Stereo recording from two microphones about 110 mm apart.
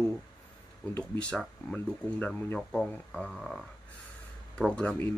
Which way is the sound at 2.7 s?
5° left (ahead or behind).